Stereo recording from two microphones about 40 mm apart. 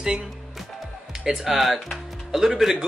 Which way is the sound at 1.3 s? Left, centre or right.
Centre.